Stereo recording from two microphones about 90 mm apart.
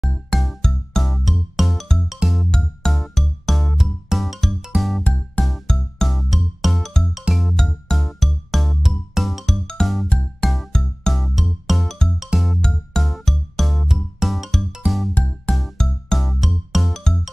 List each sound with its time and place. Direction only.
0.1 s music: centre (ahead or behind)
15.1 s music: 15° left (ahead or behind)
15.5 s music: 5° left (ahead or behind)